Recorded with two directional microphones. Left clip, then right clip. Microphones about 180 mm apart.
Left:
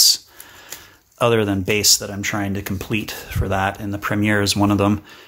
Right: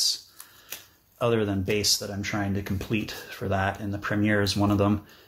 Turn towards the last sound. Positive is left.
turn(degrees=35)  # may be behind; listen again after turning